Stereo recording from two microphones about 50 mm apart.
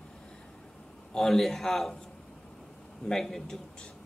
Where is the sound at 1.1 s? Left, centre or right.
Centre.